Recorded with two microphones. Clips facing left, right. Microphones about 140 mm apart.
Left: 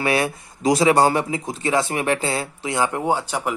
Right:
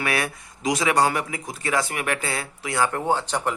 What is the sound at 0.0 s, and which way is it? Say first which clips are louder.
A man's voice: left 5 dB; 25° left (ahead or behind).